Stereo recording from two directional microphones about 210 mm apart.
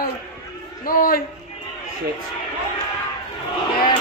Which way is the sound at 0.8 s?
45° left (ahead or behind).